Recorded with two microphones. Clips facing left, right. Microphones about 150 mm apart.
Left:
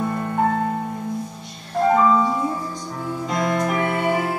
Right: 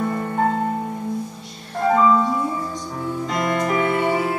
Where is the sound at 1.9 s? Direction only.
5° left (ahead or behind).